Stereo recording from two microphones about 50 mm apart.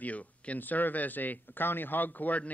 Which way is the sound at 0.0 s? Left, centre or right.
Left.